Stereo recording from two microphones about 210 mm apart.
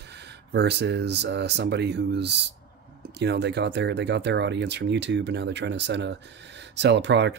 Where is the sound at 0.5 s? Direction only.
55° right (ahead or behind).